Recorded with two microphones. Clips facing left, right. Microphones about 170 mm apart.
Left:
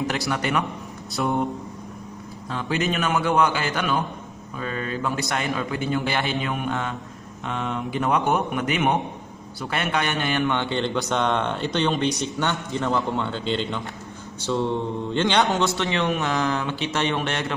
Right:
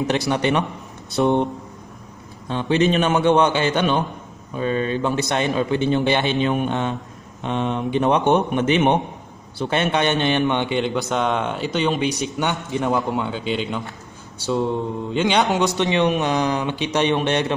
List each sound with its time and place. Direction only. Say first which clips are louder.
0.3 s a man's voice: right 4 dB; 25° right (ahead or behind)
11.0 s speech: right 2 dB; 5° right (ahead or behind); by 17.6 s 20° right (ahead or behind)